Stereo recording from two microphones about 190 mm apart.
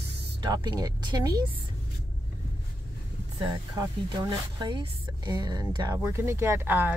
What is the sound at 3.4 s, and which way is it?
Speech, 25° right (ahead or behind).